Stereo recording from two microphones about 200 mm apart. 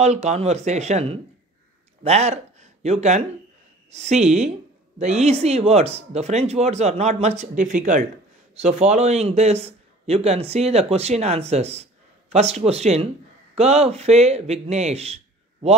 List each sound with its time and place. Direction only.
0.0 s a man's voice: 35° right (ahead or behind)